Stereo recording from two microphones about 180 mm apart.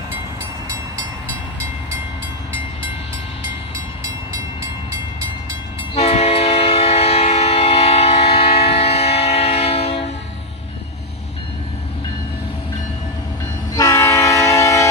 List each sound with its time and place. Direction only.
3.7 s train: 15° right (ahead or behind)
5.9 s train: 35° left (ahead or behind)
13.7 s train: 20° left (ahead or behind)